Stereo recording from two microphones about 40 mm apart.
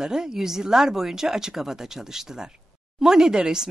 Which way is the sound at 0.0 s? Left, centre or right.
Centre.